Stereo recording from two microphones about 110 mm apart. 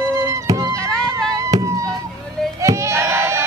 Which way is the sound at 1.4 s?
30° right (ahead or behind).